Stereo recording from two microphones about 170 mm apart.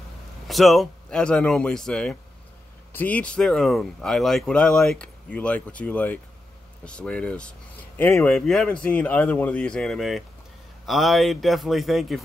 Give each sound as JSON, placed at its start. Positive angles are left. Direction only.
{"t": 0.5, "sound": "speech", "side_deg": 0}
{"t": 8.3, "sound": "speech", "side_deg": 5}